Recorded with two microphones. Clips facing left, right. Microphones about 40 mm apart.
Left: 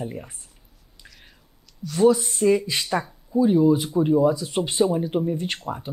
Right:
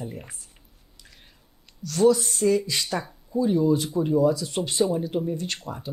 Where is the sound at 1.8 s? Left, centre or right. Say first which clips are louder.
Left 1 dB; centre.